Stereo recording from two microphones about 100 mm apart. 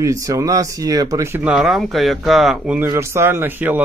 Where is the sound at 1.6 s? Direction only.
Centre (ahead or behind).